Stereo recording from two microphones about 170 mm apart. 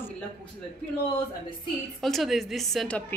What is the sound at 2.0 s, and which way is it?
A woman's voice, centre (ahead or behind).